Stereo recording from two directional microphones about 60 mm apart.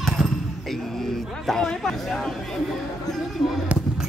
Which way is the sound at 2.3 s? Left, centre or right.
Centre.